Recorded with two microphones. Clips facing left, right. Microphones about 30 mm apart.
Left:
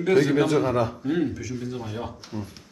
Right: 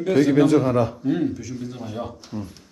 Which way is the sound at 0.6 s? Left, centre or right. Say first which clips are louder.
Right 3 dB; left.